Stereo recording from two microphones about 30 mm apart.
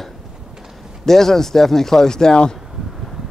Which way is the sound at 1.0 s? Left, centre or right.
Centre.